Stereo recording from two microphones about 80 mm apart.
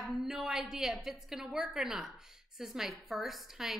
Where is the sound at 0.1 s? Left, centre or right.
Centre.